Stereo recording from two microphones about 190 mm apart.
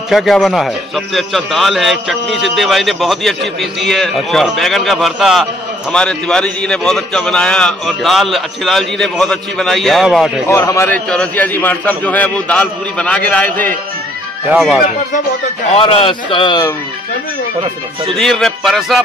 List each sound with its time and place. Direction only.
0.1 s a man's voice: centre (ahead or behind)
10.5 s a man's voice: 15° left (ahead or behind)
14.5 s a man's voice: 5° right (ahead or behind)
15.7 s a man's voice: 30° left (ahead or behind)
18.1 s a man's voice: centre (ahead or behind)